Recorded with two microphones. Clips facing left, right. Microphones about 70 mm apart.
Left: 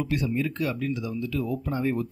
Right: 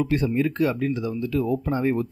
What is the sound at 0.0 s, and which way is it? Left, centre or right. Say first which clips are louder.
Speech: right 5 dB; right.